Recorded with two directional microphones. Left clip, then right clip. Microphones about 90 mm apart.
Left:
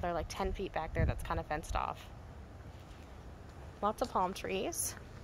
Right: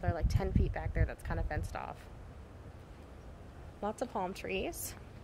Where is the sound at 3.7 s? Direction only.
5° right (ahead or behind).